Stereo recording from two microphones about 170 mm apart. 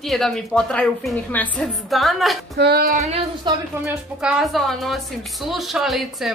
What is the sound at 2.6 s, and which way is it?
Music, 65° right (ahead or behind).